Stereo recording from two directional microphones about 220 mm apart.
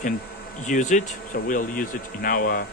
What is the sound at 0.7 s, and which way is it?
Speech, 35° left (ahead or behind).